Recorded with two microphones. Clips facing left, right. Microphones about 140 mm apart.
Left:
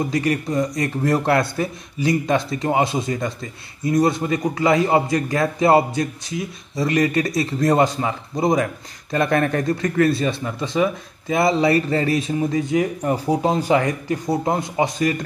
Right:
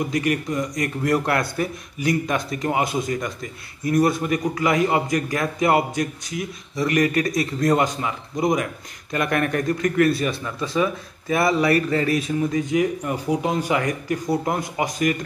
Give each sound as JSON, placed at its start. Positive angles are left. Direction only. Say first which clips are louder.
{"t": 0.1, "sound": "speech", "louder": "left 2 dB", "side_deg": 30}